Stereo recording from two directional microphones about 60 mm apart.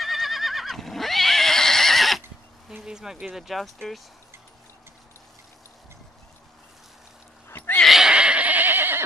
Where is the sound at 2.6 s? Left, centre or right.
Centre.